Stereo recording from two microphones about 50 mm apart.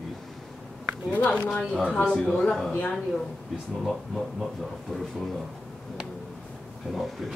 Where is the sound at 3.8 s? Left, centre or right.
Centre.